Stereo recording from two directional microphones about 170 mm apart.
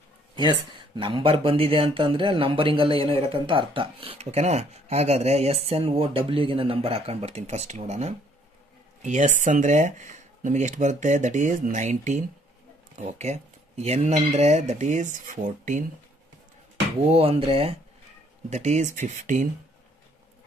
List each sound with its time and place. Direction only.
0.4 s speech: 30° right (ahead or behind); by 15.8 s 50° right (ahead or behind)
17.0 s speech: 35° right (ahead or behind)
18.5 s speech: 45° right (ahead or behind)